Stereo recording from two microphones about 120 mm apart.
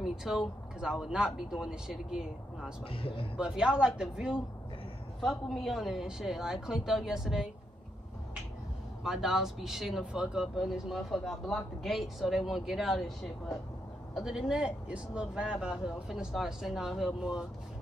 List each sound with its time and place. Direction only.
0.0 s speech: 5° right (ahead or behind)
2.9 s speech: 50° left (ahead or behind)
3.3 s speech: 5° right (ahead or behind)
9.0 s speech: 5° right (ahead or behind)